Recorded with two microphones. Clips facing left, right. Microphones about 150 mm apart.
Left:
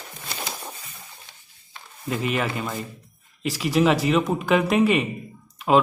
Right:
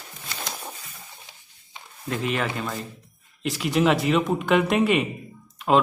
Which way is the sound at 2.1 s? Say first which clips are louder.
Left 1 dB; 5° left (ahead or behind).